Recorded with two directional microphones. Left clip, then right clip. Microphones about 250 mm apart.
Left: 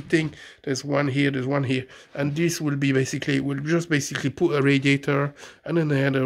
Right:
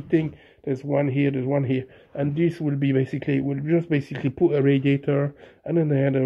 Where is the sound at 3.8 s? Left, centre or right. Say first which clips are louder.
Even; left.